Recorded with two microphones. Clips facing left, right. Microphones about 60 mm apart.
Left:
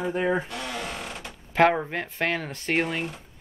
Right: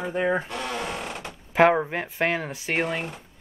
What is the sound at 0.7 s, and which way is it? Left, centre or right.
Sewing machine, centre.